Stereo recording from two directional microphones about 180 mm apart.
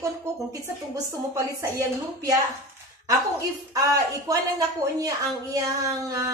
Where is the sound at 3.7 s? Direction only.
20° right (ahead or behind).